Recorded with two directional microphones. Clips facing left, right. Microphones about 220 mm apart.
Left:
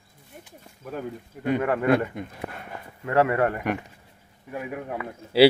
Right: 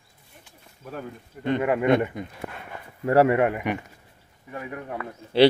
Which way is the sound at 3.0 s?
30° right (ahead or behind).